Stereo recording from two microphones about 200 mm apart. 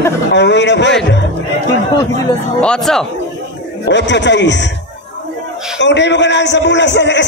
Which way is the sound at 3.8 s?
60° left (ahead or behind).